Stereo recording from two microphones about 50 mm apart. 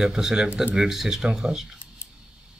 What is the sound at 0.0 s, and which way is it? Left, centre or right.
Speech, centre.